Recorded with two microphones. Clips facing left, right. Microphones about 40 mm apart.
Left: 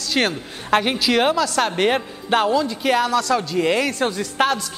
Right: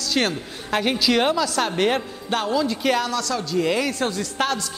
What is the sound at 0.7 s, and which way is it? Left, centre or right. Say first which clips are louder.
Speech: left 4 dB; centre.